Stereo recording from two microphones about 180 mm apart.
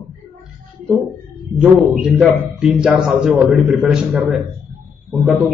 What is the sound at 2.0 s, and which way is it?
A man's voice, 5° right (ahead or behind).